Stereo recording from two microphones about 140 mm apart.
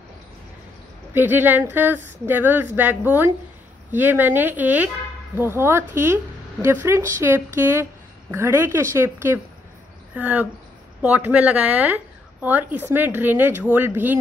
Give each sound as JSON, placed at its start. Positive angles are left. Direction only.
{"t": 1.1, "sound": "a woman's voice", "side_deg": -15}